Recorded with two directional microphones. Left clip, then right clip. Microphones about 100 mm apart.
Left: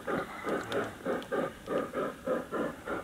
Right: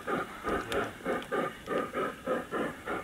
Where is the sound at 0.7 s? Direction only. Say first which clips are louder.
Right 1 dB; 10° right (ahead or behind).